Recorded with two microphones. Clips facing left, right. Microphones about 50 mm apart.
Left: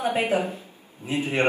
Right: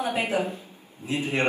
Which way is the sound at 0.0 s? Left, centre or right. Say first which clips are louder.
Left 2 dB; left.